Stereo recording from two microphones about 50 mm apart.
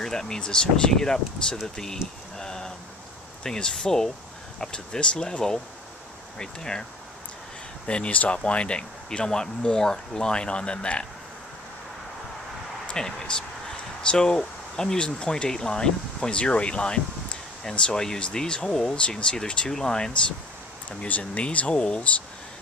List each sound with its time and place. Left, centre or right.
0.0 s speech: centre
1.8 s a sound: centre
3.4 s speech: centre
12.9 s speech: centre
21.1 s speech: left